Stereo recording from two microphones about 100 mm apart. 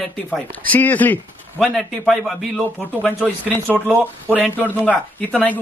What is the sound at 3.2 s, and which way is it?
Speech, 15° right (ahead or behind).